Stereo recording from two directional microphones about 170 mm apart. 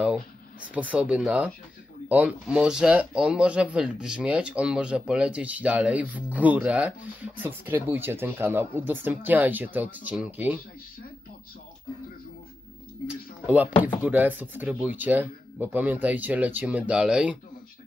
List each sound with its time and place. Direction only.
0.0 s speech: 5° right (ahead or behind)
14.0 s speech: 10° right (ahead or behind)